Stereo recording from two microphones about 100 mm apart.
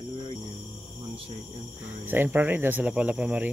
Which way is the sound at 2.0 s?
20° right (ahead or behind).